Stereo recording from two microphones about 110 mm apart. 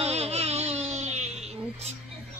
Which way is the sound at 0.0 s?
70° right (ahead or behind).